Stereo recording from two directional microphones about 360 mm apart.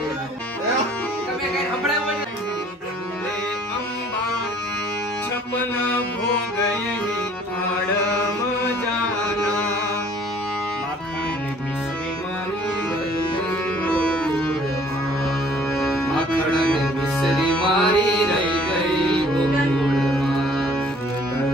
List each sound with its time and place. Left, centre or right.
13.8 s music: centre
16.7 s music: centre